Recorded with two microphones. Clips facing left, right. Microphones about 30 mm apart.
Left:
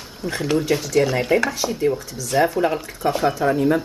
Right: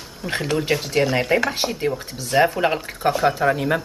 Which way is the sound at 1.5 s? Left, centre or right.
Right.